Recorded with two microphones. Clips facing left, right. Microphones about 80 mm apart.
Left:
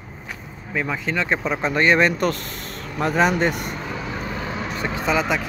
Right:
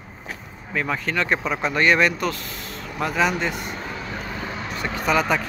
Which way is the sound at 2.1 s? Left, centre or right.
Left.